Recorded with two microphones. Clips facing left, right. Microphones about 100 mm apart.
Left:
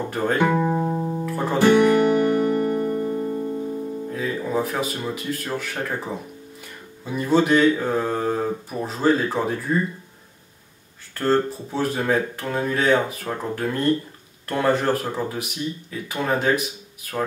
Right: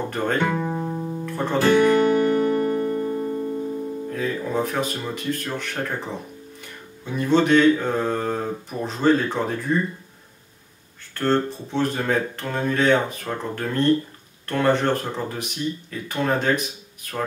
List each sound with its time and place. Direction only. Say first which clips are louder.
0.1 s speech: left 4 dB; 10° left (ahead or behind)
0.7 s music: left 4 dB; 25° left (ahead or behind)
1.2 s music: left 2 dB; 5° left (ahead or behind)
4.1 s speech: left 1 dB; 5° left (ahead or behind)
11.1 s speech: left 1 dB; 5° left (ahead or behind)